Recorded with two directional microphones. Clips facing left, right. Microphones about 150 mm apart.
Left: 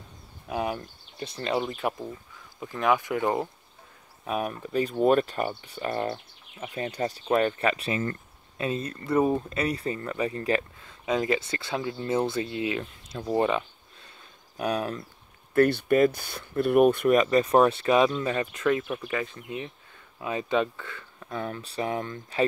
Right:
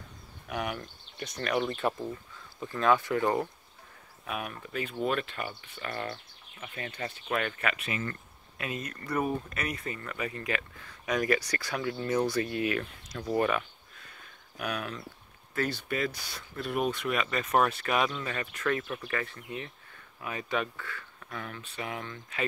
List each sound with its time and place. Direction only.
0.5 s speech: 30° left (ahead or behind)
1.7 s speech: 10° left (ahead or behind)
4.2 s speech: 35° left (ahead or behind)
10.8 s speech: 25° left (ahead or behind)
15.5 s speech: 60° left (ahead or behind); by 22.4 s 35° left (ahead or behind)